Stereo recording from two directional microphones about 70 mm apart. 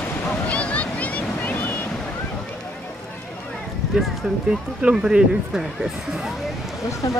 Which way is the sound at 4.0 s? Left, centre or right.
Centre.